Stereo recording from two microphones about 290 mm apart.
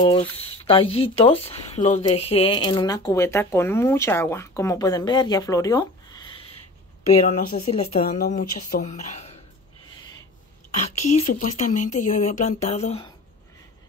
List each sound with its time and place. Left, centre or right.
0.0 s speech: centre
11.3 s speech: left